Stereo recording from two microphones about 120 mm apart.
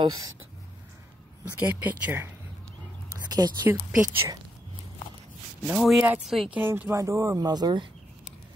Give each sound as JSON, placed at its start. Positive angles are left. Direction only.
{"t": 1.6, "sound": "speech", "side_deg": -15}
{"t": 3.3, "sound": "speech", "side_deg": -35}
{"t": 3.6, "sound": "speech", "side_deg": -15}
{"t": 5.7, "sound": "speech", "side_deg": 0}
{"t": 6.5, "sound": "a woman's voice", "side_deg": -15}